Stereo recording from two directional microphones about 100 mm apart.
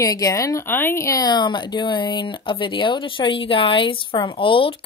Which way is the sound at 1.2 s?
50° left (ahead or behind).